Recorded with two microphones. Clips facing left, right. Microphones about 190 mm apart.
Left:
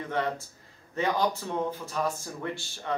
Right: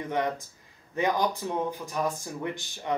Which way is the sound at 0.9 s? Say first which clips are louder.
Right 1 dB; 15° right (ahead or behind).